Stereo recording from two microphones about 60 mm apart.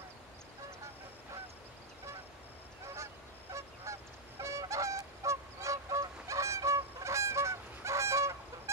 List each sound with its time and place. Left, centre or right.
3.5 s goose: right